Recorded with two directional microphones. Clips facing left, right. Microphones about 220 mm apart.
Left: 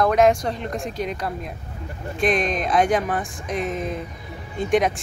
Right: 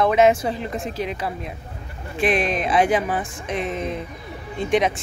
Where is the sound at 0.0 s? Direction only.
5° right (ahead or behind).